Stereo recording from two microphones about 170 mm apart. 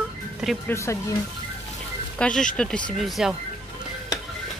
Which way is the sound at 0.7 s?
15° left (ahead or behind).